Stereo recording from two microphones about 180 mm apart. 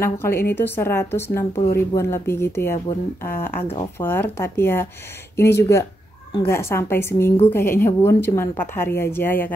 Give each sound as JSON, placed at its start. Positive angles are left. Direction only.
{"t": 0.0, "sound": "a woman's voice", "side_deg": 15}